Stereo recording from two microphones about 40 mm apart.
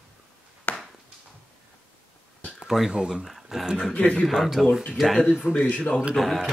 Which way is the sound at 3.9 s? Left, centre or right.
Left.